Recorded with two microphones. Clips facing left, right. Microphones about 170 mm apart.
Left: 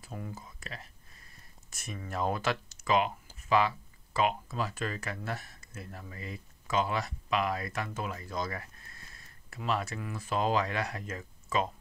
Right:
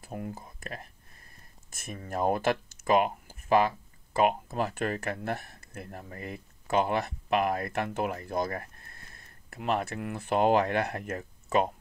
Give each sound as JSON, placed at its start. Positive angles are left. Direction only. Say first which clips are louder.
{"t": 0.0, "sound": "speech", "louder": "right 4 dB", "side_deg": -55}